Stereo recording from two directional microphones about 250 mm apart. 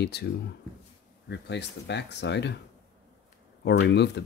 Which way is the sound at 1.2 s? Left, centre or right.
Left.